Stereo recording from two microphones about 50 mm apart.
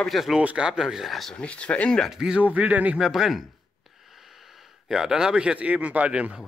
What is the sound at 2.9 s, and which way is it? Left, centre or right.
Speech, centre.